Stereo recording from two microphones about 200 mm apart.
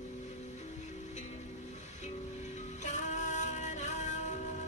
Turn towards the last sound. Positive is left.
turn(degrees=35)  # may be behind; listen again after turning